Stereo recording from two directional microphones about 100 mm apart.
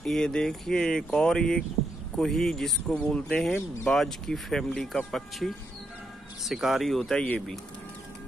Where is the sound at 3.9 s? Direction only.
5° left (ahead or behind).